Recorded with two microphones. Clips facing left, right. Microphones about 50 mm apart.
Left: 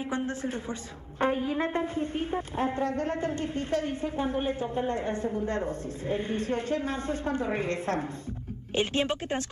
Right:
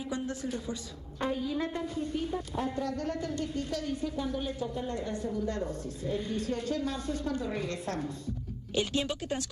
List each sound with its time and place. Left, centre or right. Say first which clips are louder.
0.1 s a woman's voice: left 2 dB; left